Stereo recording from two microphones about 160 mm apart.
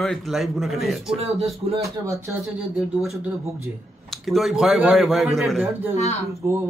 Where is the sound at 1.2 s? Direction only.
40° right (ahead or behind).